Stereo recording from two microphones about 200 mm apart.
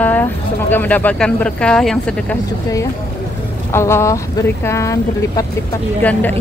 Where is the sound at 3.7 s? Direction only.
15° left (ahead or behind).